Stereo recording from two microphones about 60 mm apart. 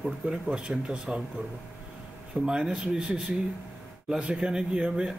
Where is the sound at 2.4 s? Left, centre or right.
Centre.